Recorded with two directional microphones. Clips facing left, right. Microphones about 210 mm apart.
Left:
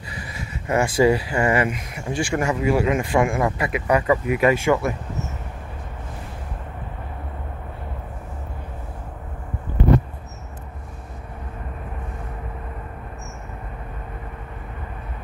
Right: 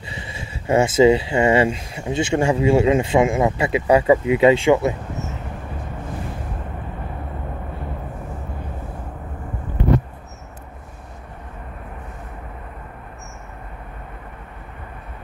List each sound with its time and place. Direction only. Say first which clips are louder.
0.1 s speech: even; 25° right (ahead or behind)